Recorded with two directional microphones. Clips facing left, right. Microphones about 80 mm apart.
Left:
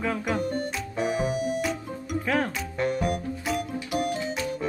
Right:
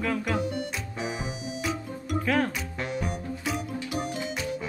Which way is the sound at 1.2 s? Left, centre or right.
Left.